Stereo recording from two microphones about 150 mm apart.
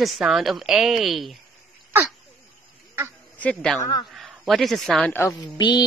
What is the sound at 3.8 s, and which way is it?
Speech, 30° left (ahead or behind).